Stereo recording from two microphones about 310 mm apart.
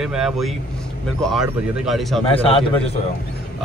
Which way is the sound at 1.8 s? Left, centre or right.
Centre.